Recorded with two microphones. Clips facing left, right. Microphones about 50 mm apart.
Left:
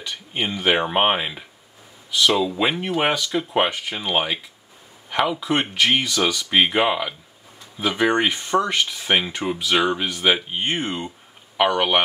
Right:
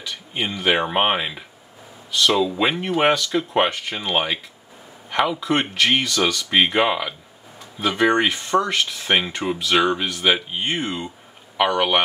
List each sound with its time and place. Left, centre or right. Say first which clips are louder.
0.1 s speech: left 1 dB; centre
8.4 s speech: even; centre
11.5 s speech: even; centre